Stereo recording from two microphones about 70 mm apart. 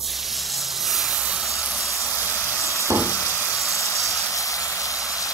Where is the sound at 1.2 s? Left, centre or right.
Centre.